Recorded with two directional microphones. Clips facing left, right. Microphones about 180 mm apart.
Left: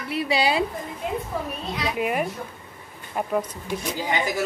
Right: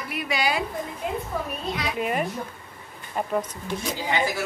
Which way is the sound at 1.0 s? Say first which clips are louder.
Left 2 dB; centre (ahead or behind).